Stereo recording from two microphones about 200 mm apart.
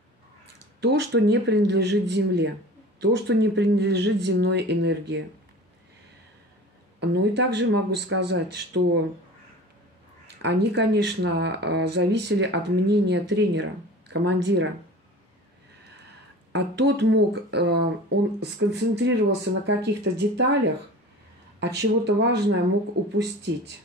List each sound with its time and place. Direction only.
0.7 s speech: 60° right (ahead or behind)
7.0 s speech: 60° right (ahead or behind)
10.2 s speech: 55° right (ahead or behind)
16.5 s speech: 55° right (ahead or behind)